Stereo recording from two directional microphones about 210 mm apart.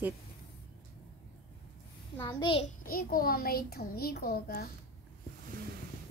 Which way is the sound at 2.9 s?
45° left (ahead or behind).